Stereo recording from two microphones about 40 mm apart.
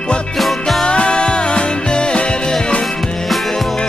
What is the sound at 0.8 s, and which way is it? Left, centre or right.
Music, left.